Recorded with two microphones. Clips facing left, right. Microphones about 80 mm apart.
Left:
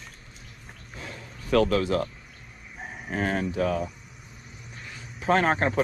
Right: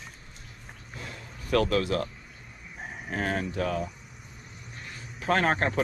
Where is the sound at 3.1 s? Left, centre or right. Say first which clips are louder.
Left 3 dB; left.